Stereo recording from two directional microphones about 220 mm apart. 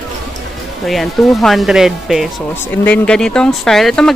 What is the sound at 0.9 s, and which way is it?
Speech, centre (ahead or behind).